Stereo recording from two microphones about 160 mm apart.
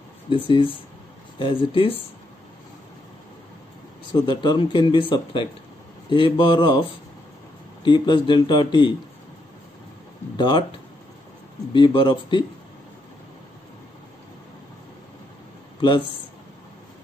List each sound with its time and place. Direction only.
0.3 s speech: 30° left (ahead or behind)
4.1 s speech: 30° left (ahead or behind)
10.3 s speech: 30° left (ahead or behind)
11.7 s speech: 30° left (ahead or behind)
15.8 s speech: 30° left (ahead or behind)